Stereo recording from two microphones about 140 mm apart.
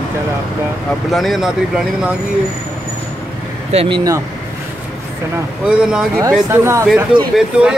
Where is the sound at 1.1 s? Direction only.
Centre (ahead or behind).